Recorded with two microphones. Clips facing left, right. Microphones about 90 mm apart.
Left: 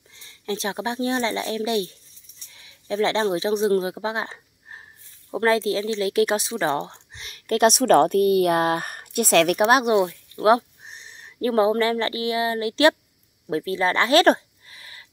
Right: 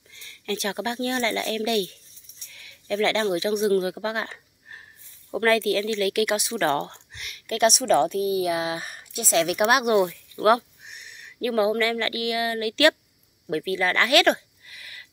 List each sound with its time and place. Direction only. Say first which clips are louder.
0.1 s speech: left 1 dB; 25° left (ahead or behind)
6.6 s speech: even; 15° left (ahead or behind)
7.2 s speech: left 3 dB; 45° left (ahead or behind); by 9.6 s 60° left (ahead or behind)
9.6 s speech: left 3 dB; 35° left (ahead or behind)
10.4 s speech: left 1 dB; 10° right (ahead or behind)
10.8 s speech: left 1 dB; 30° left (ahead or behind)
13.5 s a sound: left 2 dB; 30° left (ahead or behind)